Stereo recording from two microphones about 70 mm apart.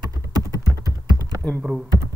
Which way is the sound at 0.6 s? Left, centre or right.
Right.